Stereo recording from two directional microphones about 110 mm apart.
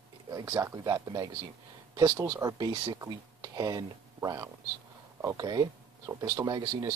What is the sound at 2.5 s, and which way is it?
Speech, 45° right (ahead or behind).